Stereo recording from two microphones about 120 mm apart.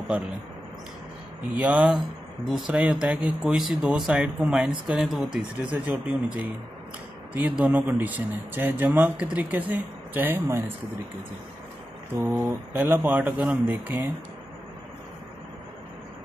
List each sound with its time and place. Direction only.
1.5 s speech: 10° right (ahead or behind)
12.4 s speech: 20° right (ahead or behind)